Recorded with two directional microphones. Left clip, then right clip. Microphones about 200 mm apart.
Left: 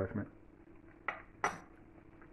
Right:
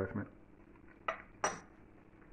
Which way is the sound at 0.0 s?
5° left (ahead or behind).